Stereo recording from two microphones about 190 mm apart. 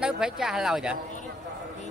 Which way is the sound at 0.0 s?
5° right (ahead or behind).